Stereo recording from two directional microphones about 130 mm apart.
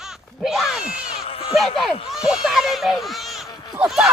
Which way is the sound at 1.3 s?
45° left (ahead or behind).